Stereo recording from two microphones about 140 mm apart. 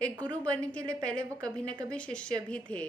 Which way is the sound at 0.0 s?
10° left (ahead or behind).